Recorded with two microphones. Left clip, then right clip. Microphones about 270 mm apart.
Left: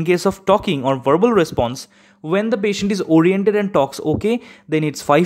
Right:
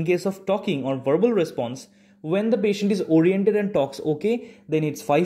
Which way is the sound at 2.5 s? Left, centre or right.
Left.